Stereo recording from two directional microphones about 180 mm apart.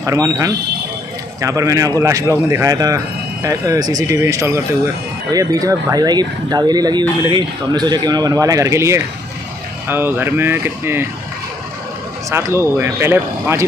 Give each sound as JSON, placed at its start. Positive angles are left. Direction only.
{"t": 0.0, "sound": "speech", "side_deg": -15}
{"t": 12.3, "sound": "speech", "side_deg": -15}